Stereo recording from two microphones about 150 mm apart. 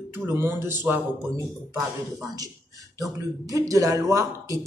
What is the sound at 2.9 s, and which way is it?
Speech, 20° right (ahead or behind).